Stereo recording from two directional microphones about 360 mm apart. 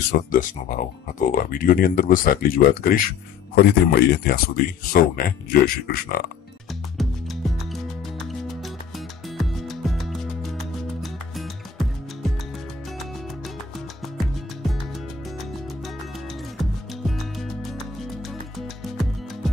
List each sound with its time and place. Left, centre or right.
0.1 s speech: left
7.0 s music: centre
14.1 s music: centre
16.5 s music: centre
19.4 s music: centre